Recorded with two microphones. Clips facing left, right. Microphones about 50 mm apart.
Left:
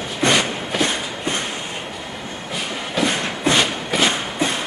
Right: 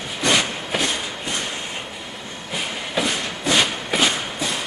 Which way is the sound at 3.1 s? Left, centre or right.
Left.